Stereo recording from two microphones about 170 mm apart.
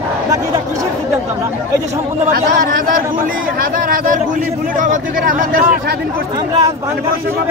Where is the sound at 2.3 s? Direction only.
55° right (ahead or behind).